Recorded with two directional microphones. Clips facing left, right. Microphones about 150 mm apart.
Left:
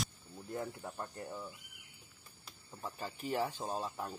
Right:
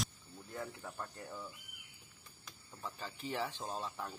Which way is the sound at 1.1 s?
15° left (ahead or behind).